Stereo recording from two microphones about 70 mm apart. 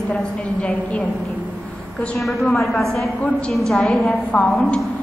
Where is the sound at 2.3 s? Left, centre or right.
Centre.